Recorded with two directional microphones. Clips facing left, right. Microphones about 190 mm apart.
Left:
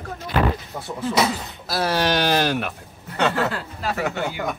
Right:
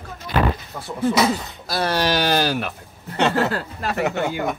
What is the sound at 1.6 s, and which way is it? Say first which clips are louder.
Speech: even; centre (ahead or behind).